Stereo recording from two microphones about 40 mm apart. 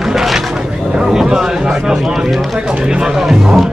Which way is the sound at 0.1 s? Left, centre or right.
Centre.